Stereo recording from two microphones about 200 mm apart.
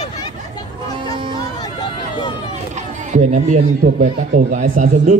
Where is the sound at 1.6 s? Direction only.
20° left (ahead or behind).